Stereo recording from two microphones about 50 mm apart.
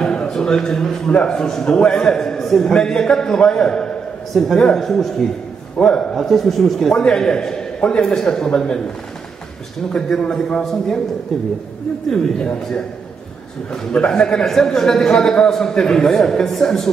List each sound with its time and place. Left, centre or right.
0.0 s a man's voice: centre
5.8 s a man's voice: centre
6.1 s a man's voice: centre
6.9 s a man's voice: centre
9.9 s a man's voice: centre
12.1 s a man's voice: centre
13.7 s a man's voice: centre